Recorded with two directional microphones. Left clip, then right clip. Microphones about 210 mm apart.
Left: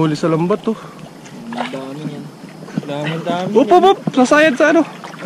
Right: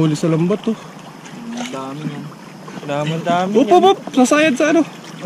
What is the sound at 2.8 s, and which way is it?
Speech, 5° right (ahead or behind).